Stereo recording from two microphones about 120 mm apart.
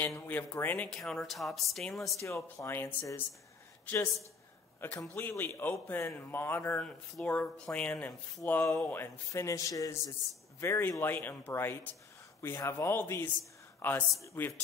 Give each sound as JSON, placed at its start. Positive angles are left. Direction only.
{"t": 0.0, "sound": "a man's voice", "side_deg": 15}
{"t": 0.8, "sound": "speech", "side_deg": 5}
{"t": 2.2, "sound": "a man's voice", "side_deg": 20}